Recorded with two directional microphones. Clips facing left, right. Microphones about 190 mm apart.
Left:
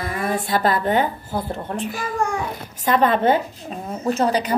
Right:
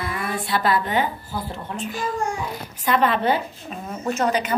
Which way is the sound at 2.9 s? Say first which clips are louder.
Left 3 dB; 45° left (ahead or behind).